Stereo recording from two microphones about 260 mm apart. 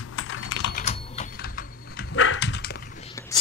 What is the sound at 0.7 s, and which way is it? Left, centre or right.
Typing, left.